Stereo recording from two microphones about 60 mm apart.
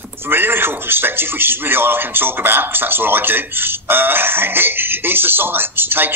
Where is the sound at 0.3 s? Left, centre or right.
Right.